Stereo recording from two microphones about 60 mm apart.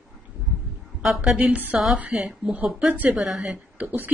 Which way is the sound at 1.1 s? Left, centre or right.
Centre.